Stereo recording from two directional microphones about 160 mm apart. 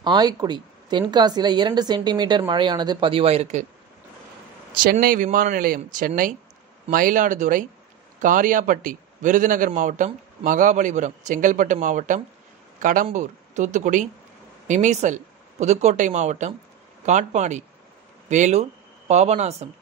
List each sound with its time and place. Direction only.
0.0 s a woman's voice: 25° right (ahead or behind)
4.7 s speech: 60° right (ahead or behind); by 19.7 s 45° right (ahead or behind)